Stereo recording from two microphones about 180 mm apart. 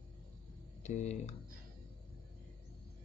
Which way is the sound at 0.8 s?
40° left (ahead or behind).